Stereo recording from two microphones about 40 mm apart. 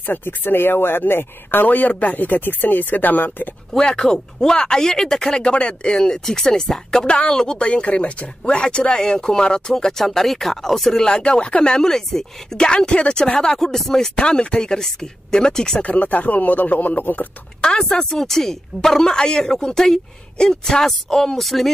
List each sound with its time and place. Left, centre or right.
0.0 s speech: left
3.7 s speech: centre
5.4 s speech: left
7.6 s speech: left
11.8 s speech: centre
12.7 s speech: left; by 14.2 s centre
14.2 s speech: left
15.8 s speech: left
17.6 s speech: centre